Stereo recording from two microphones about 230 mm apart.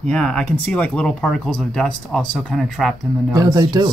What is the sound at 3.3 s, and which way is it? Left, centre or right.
Speech, centre.